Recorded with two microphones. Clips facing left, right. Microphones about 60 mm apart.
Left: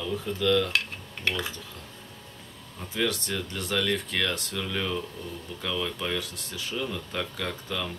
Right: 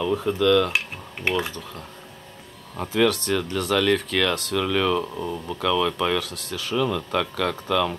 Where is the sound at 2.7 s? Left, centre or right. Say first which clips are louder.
Right 8 dB; right.